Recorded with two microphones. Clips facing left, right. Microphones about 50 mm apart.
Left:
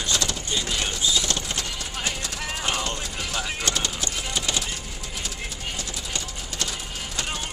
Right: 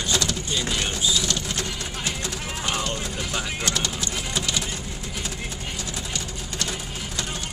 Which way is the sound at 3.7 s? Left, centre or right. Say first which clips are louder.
Even; left.